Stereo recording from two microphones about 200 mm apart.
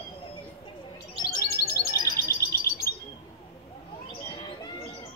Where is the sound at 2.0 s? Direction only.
50° left (ahead or behind).